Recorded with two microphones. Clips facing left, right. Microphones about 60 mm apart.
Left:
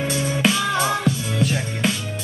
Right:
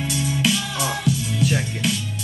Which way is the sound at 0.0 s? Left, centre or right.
Left.